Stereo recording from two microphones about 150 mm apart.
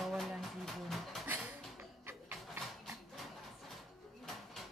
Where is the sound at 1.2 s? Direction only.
15° right (ahead or behind).